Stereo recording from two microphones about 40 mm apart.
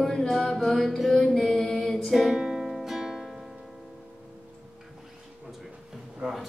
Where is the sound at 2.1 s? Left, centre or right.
Centre.